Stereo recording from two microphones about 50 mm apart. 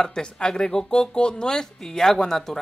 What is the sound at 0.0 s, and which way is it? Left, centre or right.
Speech, centre.